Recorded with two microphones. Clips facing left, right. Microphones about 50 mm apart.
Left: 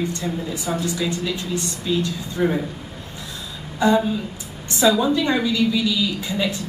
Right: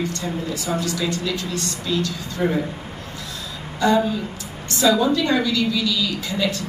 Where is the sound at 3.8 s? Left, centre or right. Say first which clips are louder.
Left 1 dB; left.